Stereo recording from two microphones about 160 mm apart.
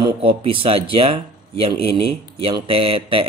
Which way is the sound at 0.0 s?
35° right (ahead or behind).